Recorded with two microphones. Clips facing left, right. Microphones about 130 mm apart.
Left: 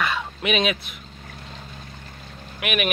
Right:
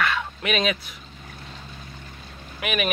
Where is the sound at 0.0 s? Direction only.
15° left (ahead or behind).